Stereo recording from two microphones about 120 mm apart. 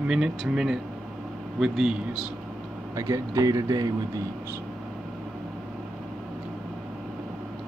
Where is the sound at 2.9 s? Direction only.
30° right (ahead or behind).